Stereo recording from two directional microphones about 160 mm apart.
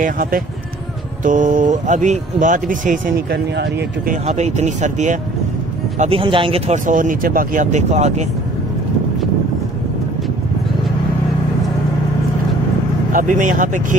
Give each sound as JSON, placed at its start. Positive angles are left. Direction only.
{"t": 0.0, "sound": "speech", "side_deg": -65}
{"t": 1.2, "sound": "speech", "side_deg": -55}
{"t": 4.1, "sound": "speech", "side_deg": -45}
{"t": 5.9, "sound": "speech", "side_deg": -35}
{"t": 6.7, "sound": "speech", "side_deg": -55}
{"t": 13.1, "sound": "speech", "side_deg": -55}